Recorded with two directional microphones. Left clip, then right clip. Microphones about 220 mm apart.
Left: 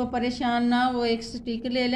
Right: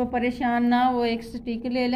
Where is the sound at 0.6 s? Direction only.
35° left (ahead or behind).